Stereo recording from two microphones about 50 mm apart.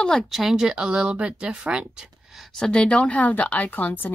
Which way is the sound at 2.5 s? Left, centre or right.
Centre.